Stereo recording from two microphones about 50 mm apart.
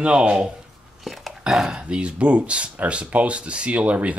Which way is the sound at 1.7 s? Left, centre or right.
Right.